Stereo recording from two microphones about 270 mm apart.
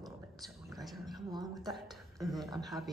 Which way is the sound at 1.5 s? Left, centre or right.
Centre.